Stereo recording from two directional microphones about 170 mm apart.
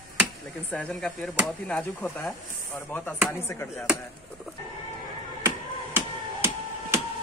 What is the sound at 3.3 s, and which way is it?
Speech, 15° left (ahead or behind).